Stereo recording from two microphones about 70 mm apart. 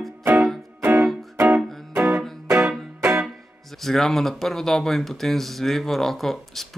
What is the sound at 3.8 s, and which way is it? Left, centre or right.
Speech, centre.